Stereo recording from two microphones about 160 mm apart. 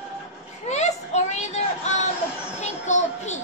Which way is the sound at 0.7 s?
45° left (ahead or behind).